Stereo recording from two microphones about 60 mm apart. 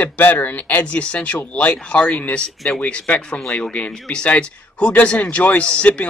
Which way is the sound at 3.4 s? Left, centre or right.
Centre.